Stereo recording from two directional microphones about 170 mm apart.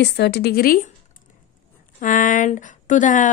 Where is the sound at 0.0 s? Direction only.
75° left (ahead or behind).